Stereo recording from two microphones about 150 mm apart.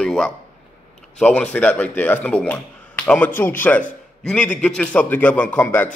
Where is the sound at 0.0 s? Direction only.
5° left (ahead or behind).